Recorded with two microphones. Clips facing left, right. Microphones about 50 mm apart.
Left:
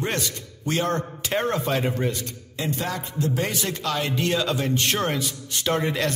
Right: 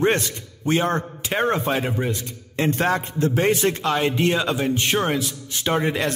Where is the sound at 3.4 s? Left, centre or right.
Right.